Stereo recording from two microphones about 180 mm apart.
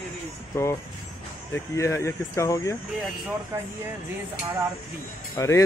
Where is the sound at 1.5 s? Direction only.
15° left (ahead or behind).